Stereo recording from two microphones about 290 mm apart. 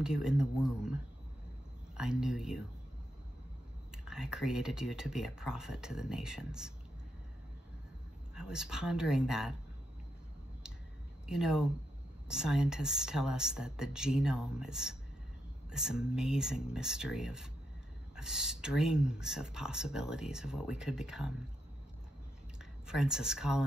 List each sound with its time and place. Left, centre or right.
0.0 s speech: centre
2.0 s speech: centre
3.9 s speech: centre
8.4 s speech: centre
11.2 s speech: centre
22.8 s speech: centre